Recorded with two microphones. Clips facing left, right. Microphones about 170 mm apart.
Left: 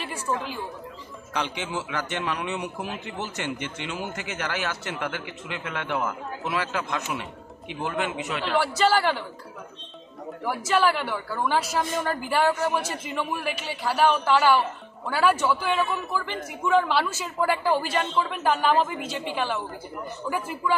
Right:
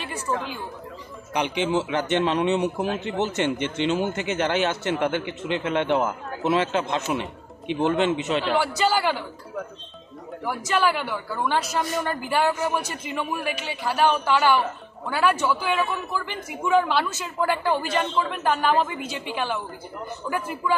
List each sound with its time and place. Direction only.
0.0 s a man's voice: centre (ahead or behind)
1.3 s a man's voice: 20° right (ahead or behind)
8.5 s a man's voice: centre (ahead or behind)
10.4 s a man's voice: centre (ahead or behind)